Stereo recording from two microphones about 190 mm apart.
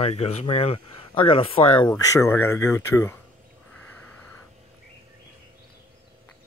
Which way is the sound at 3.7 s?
5° left (ahead or behind).